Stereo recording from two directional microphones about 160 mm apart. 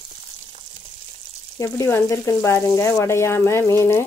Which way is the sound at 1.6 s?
20° left (ahead or behind).